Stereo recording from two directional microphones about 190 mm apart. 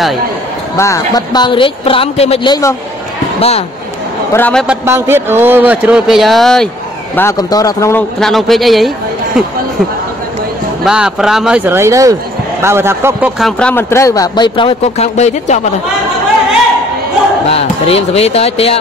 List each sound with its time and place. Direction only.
0.7 s speech: 15° left (ahead or behind); by 3.6 s 30° left (ahead or behind)
4.3 s speech: 10° left (ahead or behind)
4.6 s speech: 15° right (ahead or behind); by 6.7 s centre (ahead or behind)
7.2 s speech: 15° left (ahead or behind)
8.2 s speech: centre (ahead or behind)
10.8 s speech: 5° right (ahead or behind)
13.4 s speech: 5° left (ahead or behind); by 15.6 s 35° left (ahead or behind)
17.5 s speech: 35° left (ahead or behind)